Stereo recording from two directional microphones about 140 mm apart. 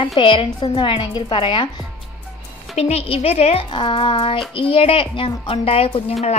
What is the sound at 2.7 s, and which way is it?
A woman's voice, 45° left (ahead or behind).